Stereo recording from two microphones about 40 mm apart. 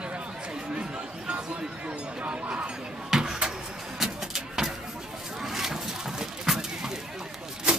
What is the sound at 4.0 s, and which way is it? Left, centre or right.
Vehicle, centre.